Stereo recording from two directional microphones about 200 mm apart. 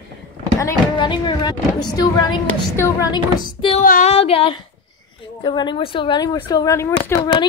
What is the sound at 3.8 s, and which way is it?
Female singing, 40° left (ahead or behind).